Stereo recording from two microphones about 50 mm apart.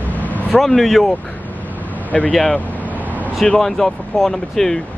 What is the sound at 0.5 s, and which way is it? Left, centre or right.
Speech, centre.